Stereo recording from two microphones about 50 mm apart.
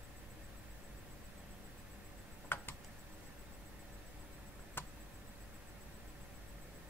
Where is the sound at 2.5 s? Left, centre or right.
Left.